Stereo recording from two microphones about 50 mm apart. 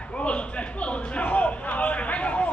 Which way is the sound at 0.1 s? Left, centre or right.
Left.